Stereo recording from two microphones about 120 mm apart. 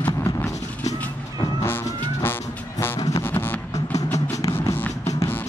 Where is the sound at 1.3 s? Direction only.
35° left (ahead or behind).